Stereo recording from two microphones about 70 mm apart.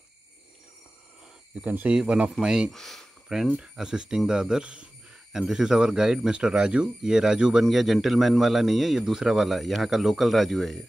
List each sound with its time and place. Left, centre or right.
1.6 s speech: right
2.7 s a man's voice: centre
3.3 s a man's voice: centre